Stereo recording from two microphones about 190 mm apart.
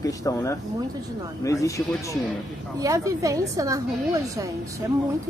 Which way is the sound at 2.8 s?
15° right (ahead or behind).